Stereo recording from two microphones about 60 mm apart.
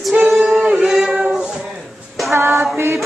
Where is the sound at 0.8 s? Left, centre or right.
Centre.